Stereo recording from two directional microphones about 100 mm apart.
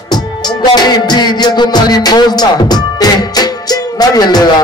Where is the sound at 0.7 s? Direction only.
45° left (ahead or behind).